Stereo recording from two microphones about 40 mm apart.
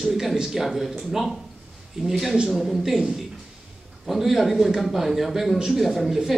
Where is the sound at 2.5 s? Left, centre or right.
Centre.